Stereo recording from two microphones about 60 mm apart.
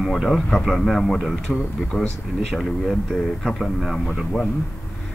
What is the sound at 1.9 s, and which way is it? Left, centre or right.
Speech, centre.